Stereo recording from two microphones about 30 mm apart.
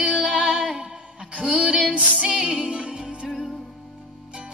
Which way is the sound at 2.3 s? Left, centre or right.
Centre.